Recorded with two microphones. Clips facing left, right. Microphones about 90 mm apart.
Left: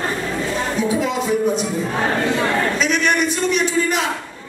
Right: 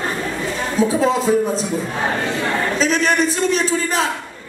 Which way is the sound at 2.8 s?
35° right (ahead or behind).